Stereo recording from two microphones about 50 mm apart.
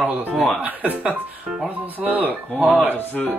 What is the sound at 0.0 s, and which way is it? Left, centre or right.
Speech, right.